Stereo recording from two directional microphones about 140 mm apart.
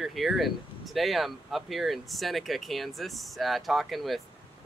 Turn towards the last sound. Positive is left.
turn(degrees=0)  # may be behind; listen again after turning